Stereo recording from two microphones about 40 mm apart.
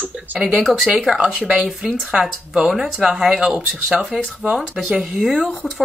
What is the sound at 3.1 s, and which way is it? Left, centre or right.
Speech, centre.